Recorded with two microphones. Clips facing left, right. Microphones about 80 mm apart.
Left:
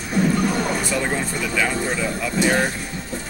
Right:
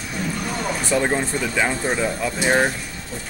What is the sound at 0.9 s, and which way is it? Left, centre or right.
Speech, right.